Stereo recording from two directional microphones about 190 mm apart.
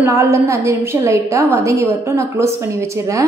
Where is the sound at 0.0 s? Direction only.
15° right (ahead or behind).